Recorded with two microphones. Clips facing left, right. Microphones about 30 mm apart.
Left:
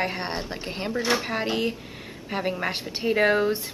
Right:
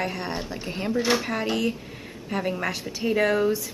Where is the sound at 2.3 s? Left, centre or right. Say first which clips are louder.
Even; left.